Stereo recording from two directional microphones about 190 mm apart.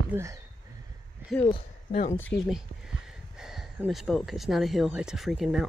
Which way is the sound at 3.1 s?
Centre (ahead or behind).